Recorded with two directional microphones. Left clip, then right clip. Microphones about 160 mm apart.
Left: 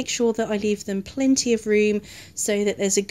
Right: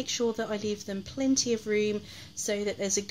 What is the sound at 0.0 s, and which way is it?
Speech, 40° left (ahead or behind).